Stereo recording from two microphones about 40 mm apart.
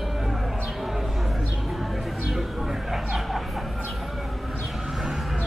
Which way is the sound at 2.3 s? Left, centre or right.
Centre.